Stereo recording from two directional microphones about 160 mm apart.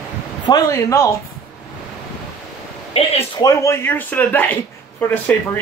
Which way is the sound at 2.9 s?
40° left (ahead or behind).